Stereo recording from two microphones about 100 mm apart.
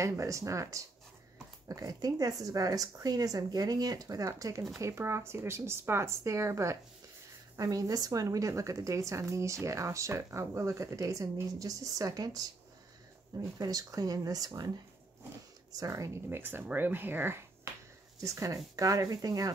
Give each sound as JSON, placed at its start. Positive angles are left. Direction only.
{"t": 0.0, "sound": "a woman's voice", "side_deg": -30}
{"t": 13.6, "sound": "a woman's voice", "side_deg": -35}
{"t": 15.7, "sound": "speech", "side_deg": -35}
{"t": 18.2, "sound": "a woman's voice", "side_deg": -35}